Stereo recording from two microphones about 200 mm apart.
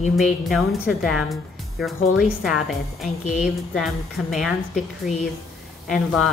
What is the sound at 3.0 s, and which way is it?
Speech, 35° left (ahead or behind).